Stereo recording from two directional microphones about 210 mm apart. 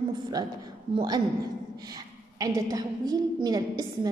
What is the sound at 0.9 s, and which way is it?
Speech, 20° right (ahead or behind).